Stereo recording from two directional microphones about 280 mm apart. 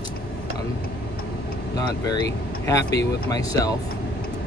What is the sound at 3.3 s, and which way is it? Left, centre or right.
Speech, centre.